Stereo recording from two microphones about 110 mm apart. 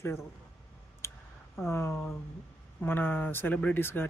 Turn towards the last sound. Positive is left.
turn(degrees=20)  # may be behind; listen again after turning